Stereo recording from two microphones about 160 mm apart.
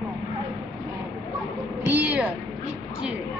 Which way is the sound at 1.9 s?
10° right (ahead or behind).